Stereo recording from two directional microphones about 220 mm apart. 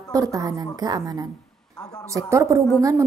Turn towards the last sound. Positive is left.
turn(degrees=-15)  # may be behind; listen again after turning